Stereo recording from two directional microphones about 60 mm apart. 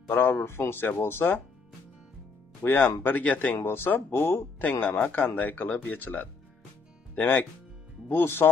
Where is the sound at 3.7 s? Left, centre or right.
Left.